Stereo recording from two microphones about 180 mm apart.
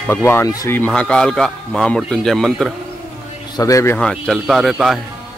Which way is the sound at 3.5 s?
20° left (ahead or behind).